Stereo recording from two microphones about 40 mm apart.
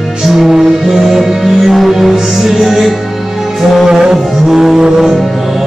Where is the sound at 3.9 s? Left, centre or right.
Centre.